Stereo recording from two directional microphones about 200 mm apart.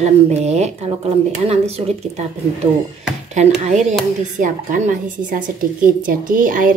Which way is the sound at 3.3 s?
35° right (ahead or behind).